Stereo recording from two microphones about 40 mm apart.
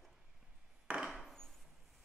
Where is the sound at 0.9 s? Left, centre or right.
Right.